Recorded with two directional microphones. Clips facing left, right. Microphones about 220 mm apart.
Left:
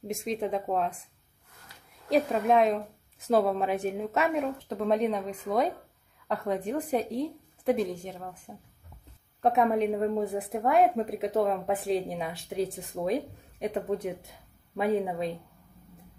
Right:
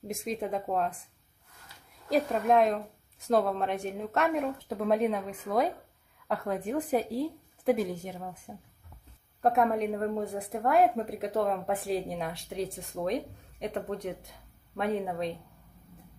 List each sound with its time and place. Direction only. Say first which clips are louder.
0.1 s a woman's voice: left 2 dB; centre (ahead or behind)
2.0 s a woman's voice: left 1 dB; centre (ahead or behind)